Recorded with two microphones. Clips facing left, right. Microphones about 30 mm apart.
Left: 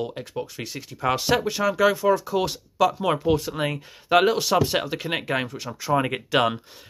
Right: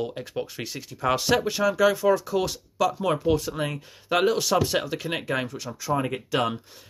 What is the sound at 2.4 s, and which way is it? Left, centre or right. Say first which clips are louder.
Speech: left 3 dB; left.